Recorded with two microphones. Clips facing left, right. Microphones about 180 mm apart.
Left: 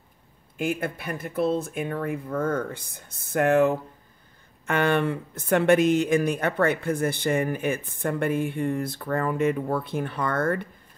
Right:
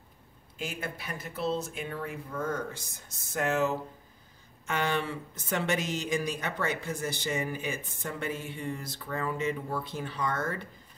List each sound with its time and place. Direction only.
0.6 s speech: 55° left (ahead or behind)